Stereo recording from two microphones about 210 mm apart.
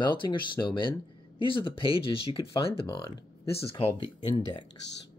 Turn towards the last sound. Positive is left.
turn(degrees=20)  # may be behind; listen again after turning